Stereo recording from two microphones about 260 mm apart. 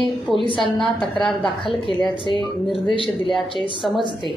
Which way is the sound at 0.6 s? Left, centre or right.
Centre.